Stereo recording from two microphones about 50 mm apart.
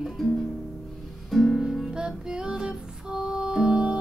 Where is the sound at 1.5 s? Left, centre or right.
Centre.